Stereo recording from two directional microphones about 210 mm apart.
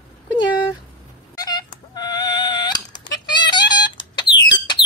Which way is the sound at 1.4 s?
20° left (ahead or behind).